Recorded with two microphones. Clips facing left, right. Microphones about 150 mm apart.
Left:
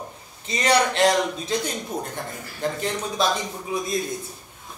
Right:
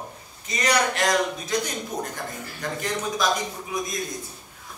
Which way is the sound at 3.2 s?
25° left (ahead or behind).